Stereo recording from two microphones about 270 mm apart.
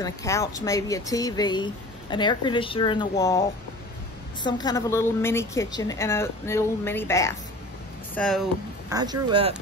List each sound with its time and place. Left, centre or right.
0.0 s speech: centre
8.9 s speech: centre